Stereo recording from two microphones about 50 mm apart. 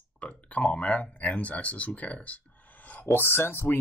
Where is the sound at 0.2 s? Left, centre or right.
Left.